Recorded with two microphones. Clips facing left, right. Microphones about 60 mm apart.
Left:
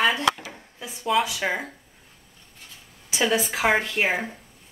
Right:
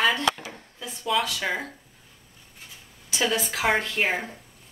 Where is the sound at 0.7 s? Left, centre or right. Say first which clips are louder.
Left 3 dB; left.